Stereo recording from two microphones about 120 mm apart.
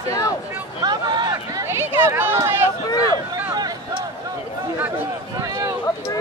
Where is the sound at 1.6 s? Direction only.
20° right (ahead or behind).